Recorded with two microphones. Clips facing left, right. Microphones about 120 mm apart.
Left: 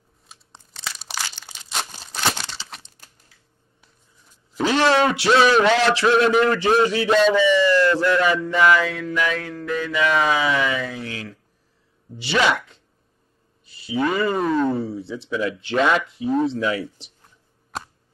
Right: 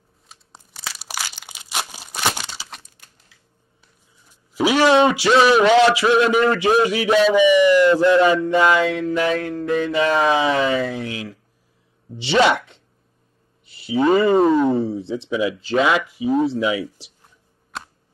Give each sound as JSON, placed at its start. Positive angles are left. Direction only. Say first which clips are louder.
{"t": 0.3, "sound": "crumpling", "louder": "right 1 dB", "side_deg": -10}
{"t": 4.6, "sound": "a man's voice", "louder": "right 3 dB", "side_deg": -10}
{"t": 5.1, "sound": "speech", "louder": "right 2 dB", "side_deg": -5}
{"t": 5.6, "sound": "a man's voice", "louder": "right 4 dB", "side_deg": -15}
{"t": 7.3, "sound": "mantra", "louder": "right 4 dB", "side_deg": -15}
{"t": 12.2, "sound": "a sound", "louder": "right 4 dB", "side_deg": -25}
{"t": 13.7, "sound": "speech", "louder": "right 6 dB", "side_deg": -25}
{"t": 14.7, "sound": "mantra", "louder": "right 4 dB", "side_deg": -25}
{"t": 15.4, "sound": "speech", "louder": "right 1 dB", "side_deg": -5}